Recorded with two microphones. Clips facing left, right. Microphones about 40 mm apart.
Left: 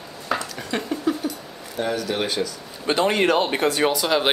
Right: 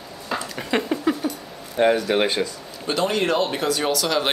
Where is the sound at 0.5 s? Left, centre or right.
Right.